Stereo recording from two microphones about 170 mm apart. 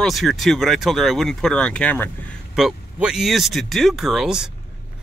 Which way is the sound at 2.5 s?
5° right (ahead or behind).